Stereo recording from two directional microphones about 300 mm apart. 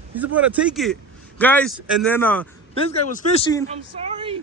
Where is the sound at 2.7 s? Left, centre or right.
Left.